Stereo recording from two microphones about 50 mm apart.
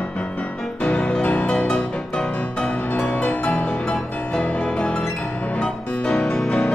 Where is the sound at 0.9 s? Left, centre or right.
Left.